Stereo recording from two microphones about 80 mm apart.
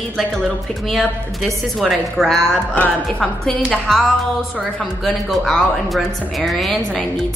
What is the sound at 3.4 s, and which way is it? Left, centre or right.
Speech, centre.